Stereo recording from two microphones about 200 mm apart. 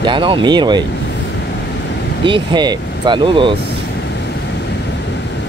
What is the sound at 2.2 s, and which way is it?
Speech, 25° right (ahead or behind).